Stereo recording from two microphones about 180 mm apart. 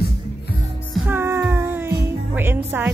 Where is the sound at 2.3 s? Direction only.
10° right (ahead or behind).